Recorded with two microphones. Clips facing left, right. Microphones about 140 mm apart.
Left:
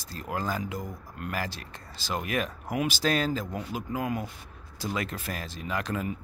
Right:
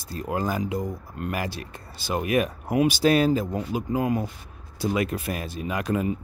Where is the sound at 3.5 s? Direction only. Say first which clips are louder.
Right 6 dB; 25° right (ahead or behind).